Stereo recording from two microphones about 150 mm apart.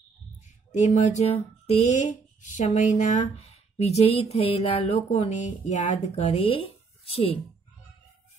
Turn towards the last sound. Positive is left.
turn(degrees=40)  # may be behind; listen again after turning